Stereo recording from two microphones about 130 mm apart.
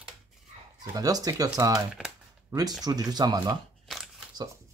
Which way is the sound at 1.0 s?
30° right (ahead or behind).